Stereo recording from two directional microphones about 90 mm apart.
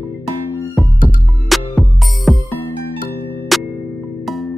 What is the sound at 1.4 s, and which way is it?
Music, centre (ahead or behind).